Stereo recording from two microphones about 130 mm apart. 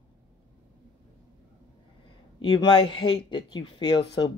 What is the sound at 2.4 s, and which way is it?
Speech, 35° left (ahead or behind).